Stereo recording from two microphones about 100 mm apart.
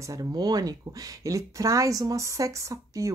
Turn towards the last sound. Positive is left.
turn(degrees=-30)  # may be behind; listen again after turning